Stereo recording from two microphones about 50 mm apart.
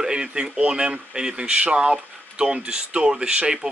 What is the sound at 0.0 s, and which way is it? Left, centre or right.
Speech, centre.